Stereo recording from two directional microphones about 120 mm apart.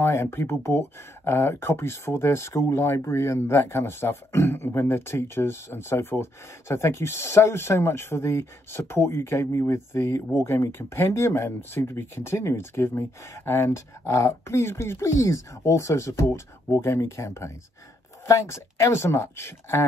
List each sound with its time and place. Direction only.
0.0 s speech: 20° left (ahead or behind)